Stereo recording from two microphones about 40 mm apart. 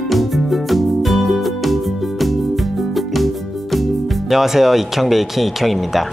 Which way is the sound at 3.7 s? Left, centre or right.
Centre.